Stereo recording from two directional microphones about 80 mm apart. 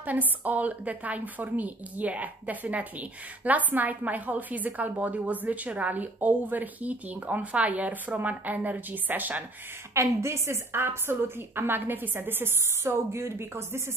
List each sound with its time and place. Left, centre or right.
0.0 s a woman's voice: right
9.9 s a woman's voice: right